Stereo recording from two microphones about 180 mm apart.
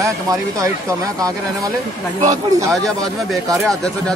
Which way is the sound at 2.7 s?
Centre (ahead or behind).